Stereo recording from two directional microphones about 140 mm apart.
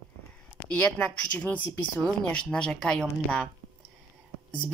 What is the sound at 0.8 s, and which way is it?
Speech, 10° left (ahead or behind).